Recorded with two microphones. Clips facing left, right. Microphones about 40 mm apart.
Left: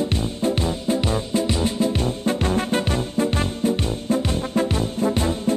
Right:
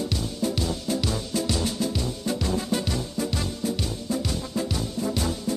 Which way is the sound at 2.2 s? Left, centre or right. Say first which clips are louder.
Left 5 dB; left.